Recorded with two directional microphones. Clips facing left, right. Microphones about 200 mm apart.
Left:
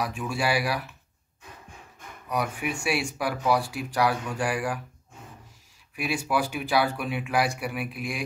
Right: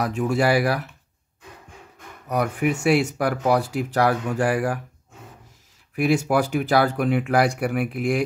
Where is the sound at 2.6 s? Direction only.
50° right (ahead or behind).